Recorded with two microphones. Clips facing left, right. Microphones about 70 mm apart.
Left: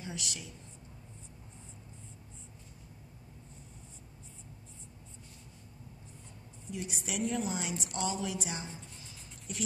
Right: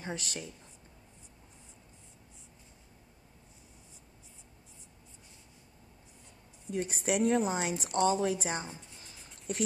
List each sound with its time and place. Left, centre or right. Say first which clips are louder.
0.0 s a woman's voice: right 3 dB; right
6.7 s a woman's voice: right 8 dB; right